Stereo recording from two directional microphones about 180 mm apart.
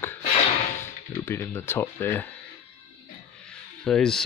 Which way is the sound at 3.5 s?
5° left (ahead or behind).